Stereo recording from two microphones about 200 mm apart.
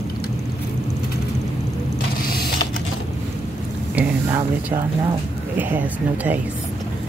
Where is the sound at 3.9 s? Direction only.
10° right (ahead or behind).